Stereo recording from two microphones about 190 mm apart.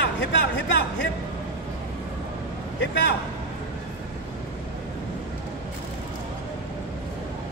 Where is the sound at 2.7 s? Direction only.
65° left (ahead or behind).